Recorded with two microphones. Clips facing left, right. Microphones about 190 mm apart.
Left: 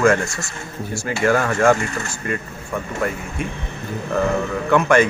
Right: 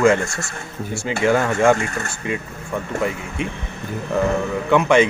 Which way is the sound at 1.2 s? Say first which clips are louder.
Even; 15° right (ahead or behind).